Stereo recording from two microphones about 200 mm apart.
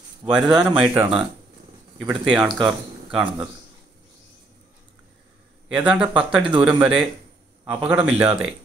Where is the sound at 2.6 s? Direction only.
Centre (ahead or behind).